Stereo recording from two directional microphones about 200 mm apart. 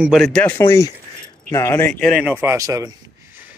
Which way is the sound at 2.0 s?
5° right (ahead or behind).